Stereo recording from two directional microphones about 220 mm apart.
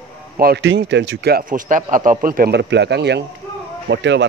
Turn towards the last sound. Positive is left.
turn(degrees=-50)  # may be behind; listen again after turning